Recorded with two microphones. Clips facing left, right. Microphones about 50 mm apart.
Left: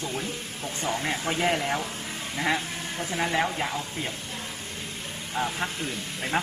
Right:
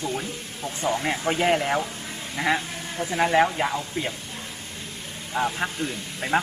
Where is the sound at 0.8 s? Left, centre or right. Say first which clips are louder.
Right 5 dB; right.